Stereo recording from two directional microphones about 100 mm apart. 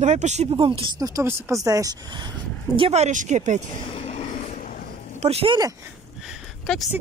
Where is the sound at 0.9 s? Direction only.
35° right (ahead or behind).